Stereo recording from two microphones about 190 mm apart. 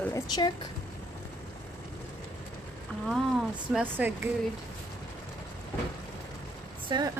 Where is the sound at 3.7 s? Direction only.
10° right (ahead or behind).